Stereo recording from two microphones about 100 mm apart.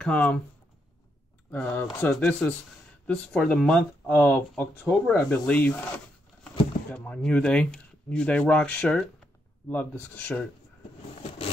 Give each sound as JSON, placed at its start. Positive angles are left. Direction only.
{"t": 0.0, "sound": "speech", "side_deg": 10}
{"t": 1.5, "sound": "speech", "side_deg": 15}
{"t": 4.1, "sound": "speech", "side_deg": 20}
{"t": 6.9, "sound": "speech", "side_deg": 10}
{"t": 9.7, "sound": "speech", "side_deg": 15}